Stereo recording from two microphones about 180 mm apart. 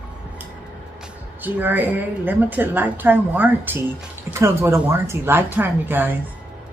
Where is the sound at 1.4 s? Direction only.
10° right (ahead or behind).